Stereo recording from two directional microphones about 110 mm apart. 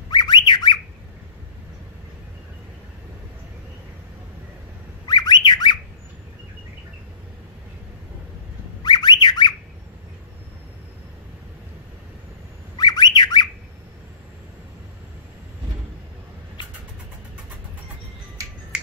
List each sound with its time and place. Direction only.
0.1 s squawk: 45° left (ahead or behind)
5.0 s bird: 40° left (ahead or behind)
8.8 s whistling: 45° left (ahead or behind)
12.7 s bird: 40° left (ahead or behind)